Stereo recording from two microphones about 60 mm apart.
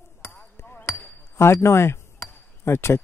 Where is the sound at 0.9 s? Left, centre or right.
Left.